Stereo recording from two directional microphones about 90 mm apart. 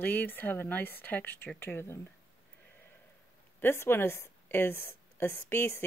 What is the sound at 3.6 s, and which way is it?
Speech, 25° left (ahead or behind).